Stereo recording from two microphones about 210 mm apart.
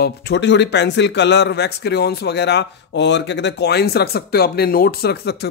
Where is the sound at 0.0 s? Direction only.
55° left (ahead or behind).